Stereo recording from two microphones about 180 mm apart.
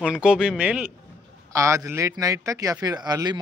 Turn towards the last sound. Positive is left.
turn(degrees=-20)  # may be behind; listen again after turning